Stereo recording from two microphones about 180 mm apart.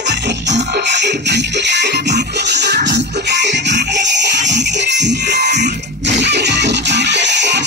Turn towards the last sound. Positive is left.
turn(degrees=-75)  # may be behind; listen again after turning